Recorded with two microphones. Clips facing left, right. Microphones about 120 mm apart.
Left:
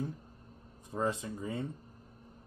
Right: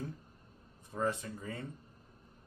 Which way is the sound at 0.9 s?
20° left (ahead or behind).